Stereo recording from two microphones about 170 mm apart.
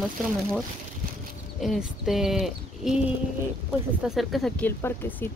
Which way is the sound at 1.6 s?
Centre (ahead or behind).